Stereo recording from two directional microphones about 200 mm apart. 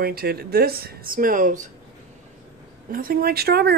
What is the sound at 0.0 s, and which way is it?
Speech, 50° right (ahead or behind).